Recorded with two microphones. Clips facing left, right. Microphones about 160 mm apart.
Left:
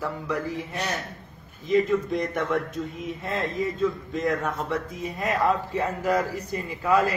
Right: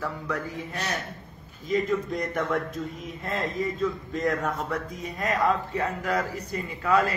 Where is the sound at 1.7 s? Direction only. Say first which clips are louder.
Left 4 dB; centre (ahead or behind).